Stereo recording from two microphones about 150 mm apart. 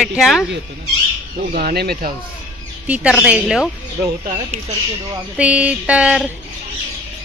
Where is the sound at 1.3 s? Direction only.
90° right.